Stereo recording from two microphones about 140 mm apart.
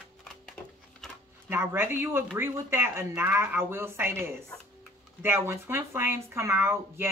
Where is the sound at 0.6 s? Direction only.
10° left (ahead or behind).